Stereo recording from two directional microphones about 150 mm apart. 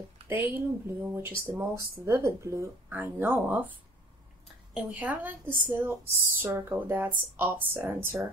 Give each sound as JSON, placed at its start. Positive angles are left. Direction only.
{"t": 0.3, "sound": "speech", "side_deg": -10}
{"t": 4.7, "sound": "speech", "side_deg": -10}